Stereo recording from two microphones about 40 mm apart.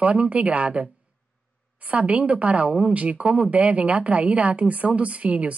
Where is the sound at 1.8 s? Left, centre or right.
Right.